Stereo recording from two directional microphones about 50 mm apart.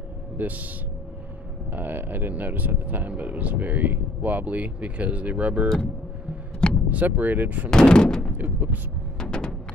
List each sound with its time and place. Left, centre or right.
0.4 s speech: right
1.7 s speech: right
6.9 s speech: right
7.7 s speech: centre
8.4 s speech: right
9.2 s a sound: centre